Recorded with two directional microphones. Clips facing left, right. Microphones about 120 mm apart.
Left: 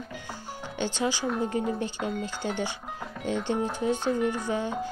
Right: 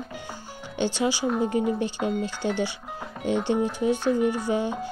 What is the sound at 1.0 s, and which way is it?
A woman's voice, 10° right (ahead or behind).